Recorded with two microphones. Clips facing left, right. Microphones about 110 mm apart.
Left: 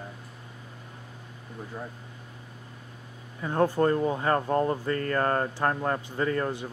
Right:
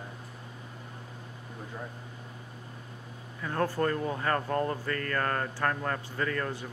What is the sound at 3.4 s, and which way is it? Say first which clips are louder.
Speech: left 5 dB; 25° left (ahead or behind).